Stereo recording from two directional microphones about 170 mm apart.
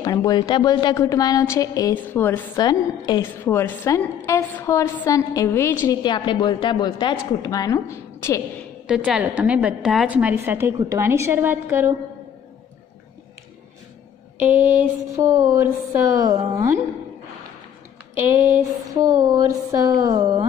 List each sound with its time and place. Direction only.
0.0 s a woman's voice: 20° left (ahead or behind)
2.5 s a woman's voice: 25° left (ahead or behind)
6.0 s a woman's voice: 25° left (ahead or behind)
8.8 s a woman's voice: 5° right (ahead or behind)
14.5 s a sound: 10° right (ahead or behind)
19.2 s a sound: 20° right (ahead or behind)